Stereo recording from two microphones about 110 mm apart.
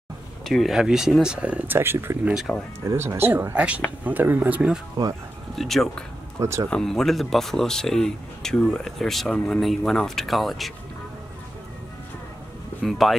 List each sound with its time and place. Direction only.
0.5 s speech: centre (ahead or behind)
1.8 s speech: 20° right (ahead or behind)
2.3 s speech: centre (ahead or behind)
2.9 s speech: 25° right (ahead or behind)
5.0 s speech: 35° right (ahead or behind)
5.6 s speech: centre (ahead or behind)
6.4 s speech: 25° right (ahead or behind)
6.7 s speech: 5° left (ahead or behind)
12.8 s speech: centre (ahead or behind)